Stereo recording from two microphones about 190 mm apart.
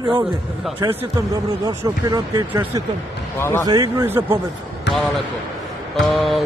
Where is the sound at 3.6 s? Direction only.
20° right (ahead or behind).